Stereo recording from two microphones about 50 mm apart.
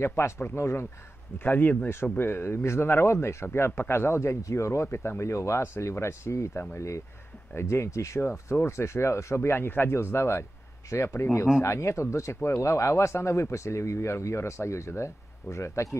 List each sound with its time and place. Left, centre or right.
0.0 s speech: left
1.4 s speech: left
4.8 s speech: left
5.2 s speech: left
7.5 s speech: left
8.3 s speech: left